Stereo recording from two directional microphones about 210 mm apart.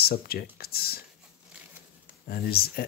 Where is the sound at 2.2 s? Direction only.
45° left (ahead or behind).